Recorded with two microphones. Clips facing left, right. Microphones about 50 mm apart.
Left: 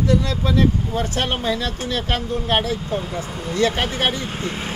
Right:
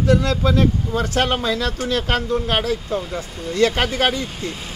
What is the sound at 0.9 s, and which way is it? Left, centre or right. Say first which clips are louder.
Speech: right 3 dB; right.